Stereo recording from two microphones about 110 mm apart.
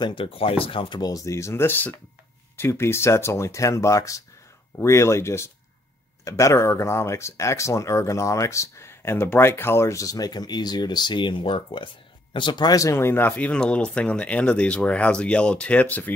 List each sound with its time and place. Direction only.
0.0 s speech: 55° left (ahead or behind)
1.1 s speech: 30° left (ahead or behind)